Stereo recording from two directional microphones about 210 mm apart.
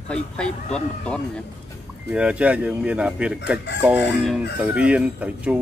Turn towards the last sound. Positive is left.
turn(degrees=-5)  # may be behind; listen again after turning